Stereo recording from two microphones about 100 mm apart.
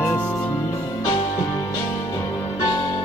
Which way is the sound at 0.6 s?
35° left (ahead or behind).